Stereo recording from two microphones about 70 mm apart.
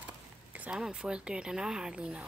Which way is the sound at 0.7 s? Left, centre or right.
Centre.